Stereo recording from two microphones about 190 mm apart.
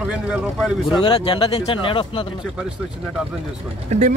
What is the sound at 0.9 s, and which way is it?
Speech, 20° left (ahead or behind).